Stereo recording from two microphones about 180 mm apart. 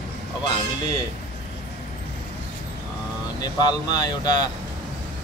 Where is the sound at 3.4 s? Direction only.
25° left (ahead or behind).